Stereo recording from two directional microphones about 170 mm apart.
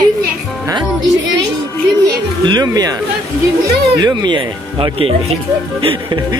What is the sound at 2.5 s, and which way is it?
Speech, 25° right (ahead or behind).